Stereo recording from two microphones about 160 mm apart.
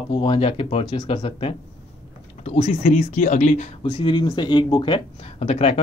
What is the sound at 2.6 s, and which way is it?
Speech, 45° left (ahead or behind).